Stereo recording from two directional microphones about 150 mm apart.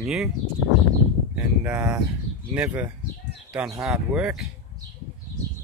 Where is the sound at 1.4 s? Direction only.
15° right (ahead or behind).